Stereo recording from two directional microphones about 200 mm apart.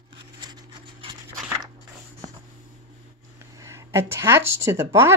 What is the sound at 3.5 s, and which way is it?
Speech, 15° right (ahead or behind).